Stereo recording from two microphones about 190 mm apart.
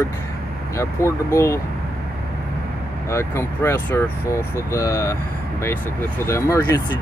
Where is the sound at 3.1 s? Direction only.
15° left (ahead or behind).